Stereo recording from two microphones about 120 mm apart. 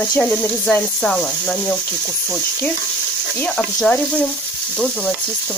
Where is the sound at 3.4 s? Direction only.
5° left (ahead or behind).